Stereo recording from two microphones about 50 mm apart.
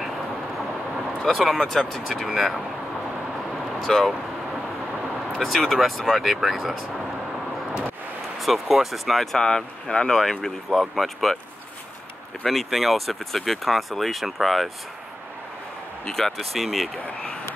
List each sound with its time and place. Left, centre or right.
1.2 s speech: centre
3.8 s speech: centre
5.4 s speech: centre
8.4 s speech: centre
12.4 s speech: centre
16.1 s speech: centre
17.0 s speech: centre